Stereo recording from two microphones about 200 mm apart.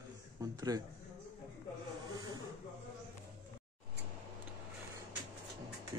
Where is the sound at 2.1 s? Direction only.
20° right (ahead or behind).